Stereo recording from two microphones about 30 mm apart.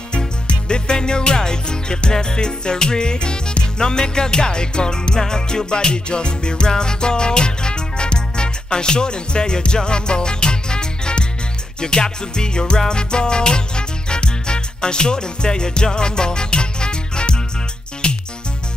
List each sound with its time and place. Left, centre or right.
0.5 s music: left